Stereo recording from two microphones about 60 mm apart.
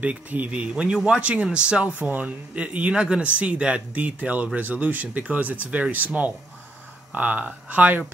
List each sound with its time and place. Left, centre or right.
0.0 s speech: right